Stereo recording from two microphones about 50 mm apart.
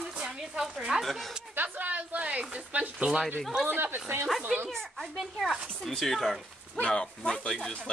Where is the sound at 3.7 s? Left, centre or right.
Right.